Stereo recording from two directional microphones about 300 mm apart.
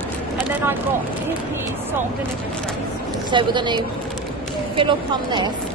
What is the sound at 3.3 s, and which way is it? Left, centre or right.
Speech, centre.